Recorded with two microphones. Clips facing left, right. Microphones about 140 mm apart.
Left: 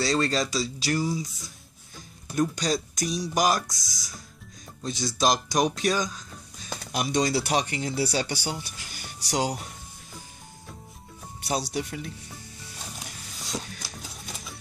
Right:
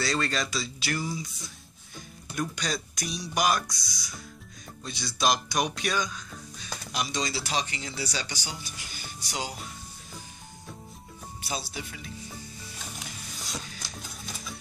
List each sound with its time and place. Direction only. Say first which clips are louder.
0.0 s speech: left 4 dB; 35° left (ahead or behind)
2.5 s speech: left 6 dB; 40° left (ahead or behind)
3.7 s speech: right 1 dB; 90° left
4.8 s speech: left 3 dB; 40° left (ahead or behind)
6.9 s speech: left 7 dB; 55° left (ahead or behind)
11.4 s speech: left 7 dB; 70° left (ahead or behind)